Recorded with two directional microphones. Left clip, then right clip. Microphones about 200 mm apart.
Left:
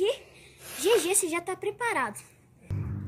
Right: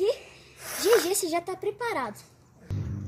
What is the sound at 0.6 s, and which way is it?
Speech, 40° right (ahead or behind).